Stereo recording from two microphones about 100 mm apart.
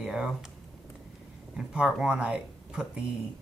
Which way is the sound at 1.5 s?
10° right (ahead or behind).